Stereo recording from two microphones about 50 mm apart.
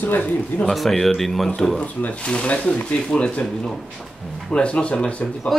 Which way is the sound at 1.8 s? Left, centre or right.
Left.